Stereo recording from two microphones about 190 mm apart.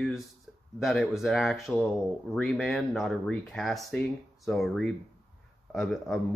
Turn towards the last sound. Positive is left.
turn(degrees=0)  # may be behind; listen again after turning